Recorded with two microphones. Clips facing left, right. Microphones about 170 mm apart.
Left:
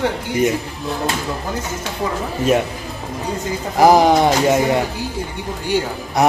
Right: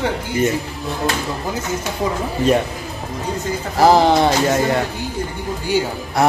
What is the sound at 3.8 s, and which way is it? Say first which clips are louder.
Speech: left 1 dB; 15° left (ahead or behind).